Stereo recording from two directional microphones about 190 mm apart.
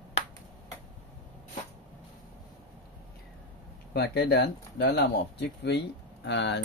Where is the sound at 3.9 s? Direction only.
60° left (ahead or behind).